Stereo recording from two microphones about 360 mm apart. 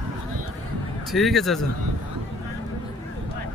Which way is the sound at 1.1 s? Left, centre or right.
Centre.